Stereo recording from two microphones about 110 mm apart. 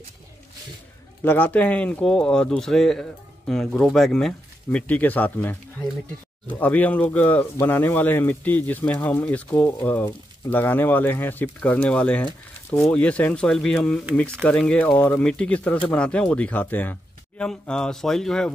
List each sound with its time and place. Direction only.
1.2 s speech: 15° left (ahead or behind)